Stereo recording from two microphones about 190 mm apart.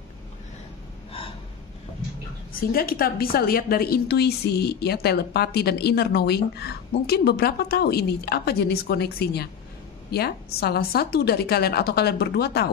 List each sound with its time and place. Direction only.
2.7 s a woman's voice: 50° left (ahead or behind)